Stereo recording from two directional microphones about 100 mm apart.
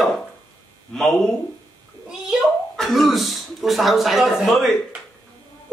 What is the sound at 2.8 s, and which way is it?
A man's voice, centre (ahead or behind).